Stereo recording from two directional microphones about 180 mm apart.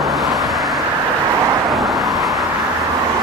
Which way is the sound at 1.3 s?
20° right (ahead or behind).